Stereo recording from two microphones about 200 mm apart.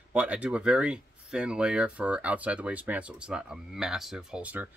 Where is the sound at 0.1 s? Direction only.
5° right (ahead or behind).